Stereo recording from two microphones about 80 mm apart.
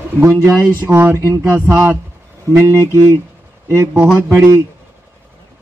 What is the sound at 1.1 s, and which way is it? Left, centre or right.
Speech, right.